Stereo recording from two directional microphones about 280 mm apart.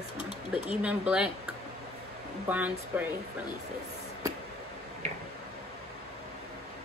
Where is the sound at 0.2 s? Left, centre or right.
Centre.